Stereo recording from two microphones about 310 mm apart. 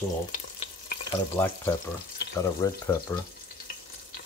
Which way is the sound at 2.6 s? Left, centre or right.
Centre.